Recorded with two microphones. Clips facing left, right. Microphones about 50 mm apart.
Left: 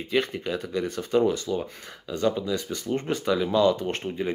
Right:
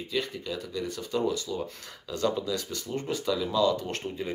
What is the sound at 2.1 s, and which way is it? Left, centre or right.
Speech, centre.